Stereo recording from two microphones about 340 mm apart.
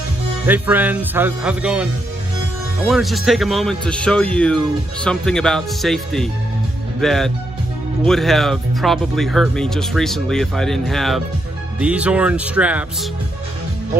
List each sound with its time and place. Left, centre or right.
0.5 s speech: centre
2.9 s speech: centre